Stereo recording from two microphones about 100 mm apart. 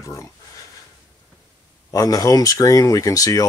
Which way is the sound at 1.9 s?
35° left (ahead or behind).